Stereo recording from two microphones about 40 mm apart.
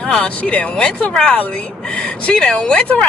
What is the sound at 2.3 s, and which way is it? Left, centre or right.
Speech, centre.